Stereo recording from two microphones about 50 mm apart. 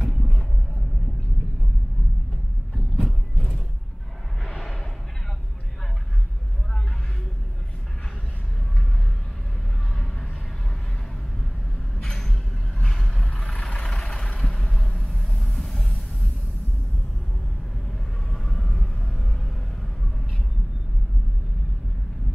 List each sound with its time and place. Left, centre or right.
0.0 s vehicle: centre
2.7 s vehicle: centre
4.4 s a sound: centre
12.0 s a sound: centre
12.8 s vehicle: centre
13.5 s vehicle: left
15.1 s vehicle: centre
18.3 s vehicle: centre